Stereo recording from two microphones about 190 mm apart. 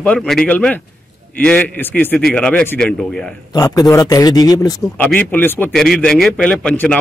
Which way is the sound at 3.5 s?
20° left (ahead or behind).